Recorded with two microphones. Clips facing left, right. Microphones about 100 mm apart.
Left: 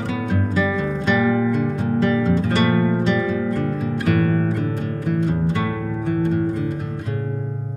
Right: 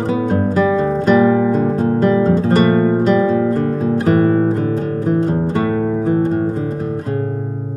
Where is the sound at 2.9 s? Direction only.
40° right (ahead or behind).